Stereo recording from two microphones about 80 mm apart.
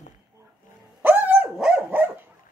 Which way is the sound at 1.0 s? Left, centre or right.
Right.